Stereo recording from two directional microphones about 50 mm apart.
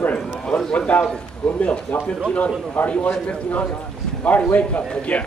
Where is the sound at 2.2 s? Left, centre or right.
Left.